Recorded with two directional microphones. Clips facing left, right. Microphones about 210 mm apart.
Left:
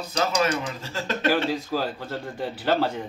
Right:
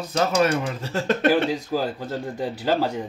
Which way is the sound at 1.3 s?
15° right (ahead or behind).